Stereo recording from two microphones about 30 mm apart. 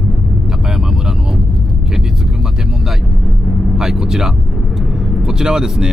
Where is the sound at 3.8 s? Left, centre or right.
Centre.